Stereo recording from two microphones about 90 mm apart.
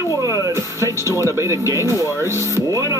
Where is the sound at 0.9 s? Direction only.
35° left (ahead or behind).